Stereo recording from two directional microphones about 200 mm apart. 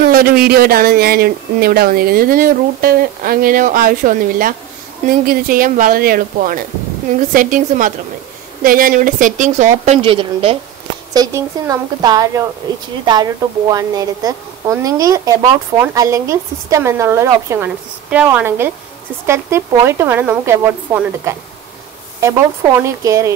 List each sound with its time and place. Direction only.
0.1 s a woman's voice: 50° right (ahead or behind)
10.0 s a woman's voice: 25° right (ahead or behind)
11.1 s a woman's voice: 15° right (ahead or behind)
22.8 s a woman's voice: 15° right (ahead or behind)